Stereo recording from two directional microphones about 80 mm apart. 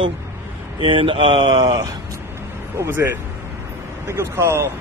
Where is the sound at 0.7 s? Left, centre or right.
Right.